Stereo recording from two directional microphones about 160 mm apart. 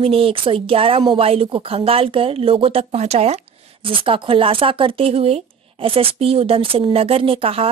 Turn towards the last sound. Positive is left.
turn(degrees=-35)  # may be behind; listen again after turning